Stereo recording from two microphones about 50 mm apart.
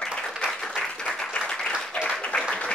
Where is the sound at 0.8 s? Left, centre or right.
Centre.